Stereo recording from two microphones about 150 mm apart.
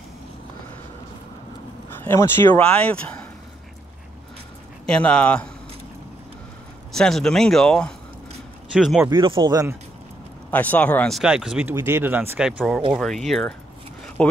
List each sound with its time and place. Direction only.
2.0 s speech: 15° left (ahead or behind)
4.8 s speech: 5° left (ahead or behind)
6.9 s speech: 5° left (ahead or behind)
9.1 s speech: 30° right (ahead or behind)
10.5 s speech: 10° left (ahead or behind)
11.1 s speech: 5° right (ahead or behind)